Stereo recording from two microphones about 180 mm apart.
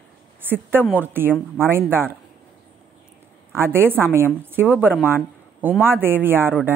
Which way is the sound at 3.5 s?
15° right (ahead or behind).